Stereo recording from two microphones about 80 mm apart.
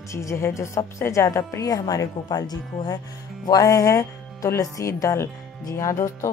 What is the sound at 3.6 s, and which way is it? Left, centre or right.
Speech, left.